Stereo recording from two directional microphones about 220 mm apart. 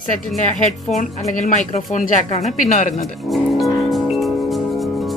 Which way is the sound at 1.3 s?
35° left (ahead or behind).